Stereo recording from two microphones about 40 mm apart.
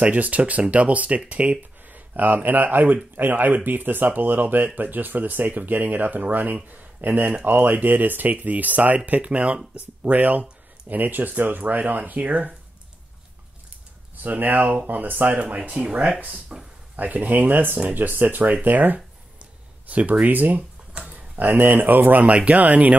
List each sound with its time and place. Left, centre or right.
0.0 s speech: right
1.9 s speech: right
14.1 s speech: right
15.3 s speech: right
16.5 s a sound: centre
16.9 s speech: right
18.1 s speech: right
18.4 s speech: right
20.9 s a sound: right
21.5 s speech: right
22.3 s speech: right